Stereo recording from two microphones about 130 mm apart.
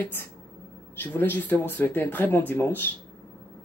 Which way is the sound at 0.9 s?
15° left (ahead or behind).